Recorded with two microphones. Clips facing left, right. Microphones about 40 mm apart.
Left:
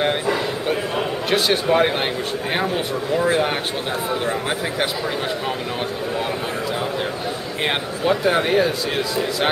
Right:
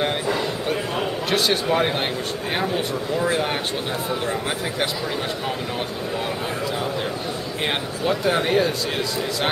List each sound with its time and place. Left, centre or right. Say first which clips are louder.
0.0 s a sound: left 2 dB; centre
2.5 s speech: left 1 dB; centre
7.6 s speech: left 3 dB; centre